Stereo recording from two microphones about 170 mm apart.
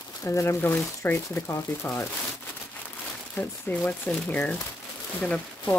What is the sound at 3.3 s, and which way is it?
Speech, 10° left (ahead or behind).